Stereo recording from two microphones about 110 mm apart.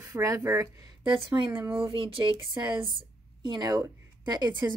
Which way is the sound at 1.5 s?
20° right (ahead or behind).